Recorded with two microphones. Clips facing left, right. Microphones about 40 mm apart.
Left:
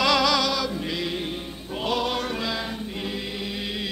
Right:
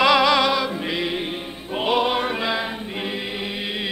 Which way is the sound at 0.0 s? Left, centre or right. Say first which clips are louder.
Right 5 dB; right.